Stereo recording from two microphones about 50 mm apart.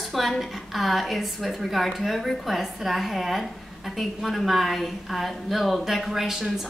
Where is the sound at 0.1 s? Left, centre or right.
Centre.